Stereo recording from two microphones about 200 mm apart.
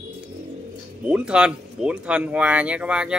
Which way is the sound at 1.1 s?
5° right (ahead or behind).